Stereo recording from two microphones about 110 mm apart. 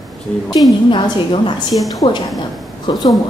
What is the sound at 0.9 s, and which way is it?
Speech, 45° left (ahead or behind).